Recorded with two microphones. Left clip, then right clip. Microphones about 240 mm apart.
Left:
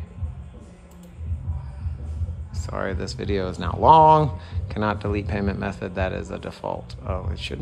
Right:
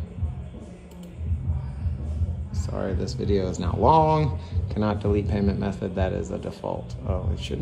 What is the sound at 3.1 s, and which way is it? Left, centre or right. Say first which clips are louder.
Speech: right 3 dB; left.